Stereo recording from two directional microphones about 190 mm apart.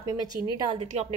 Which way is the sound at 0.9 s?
35° right (ahead or behind).